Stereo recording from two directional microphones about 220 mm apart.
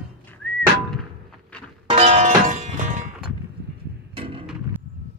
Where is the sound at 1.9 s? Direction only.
30° right (ahead or behind).